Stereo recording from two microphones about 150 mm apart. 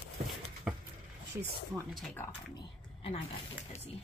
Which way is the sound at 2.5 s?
40° left (ahead or behind).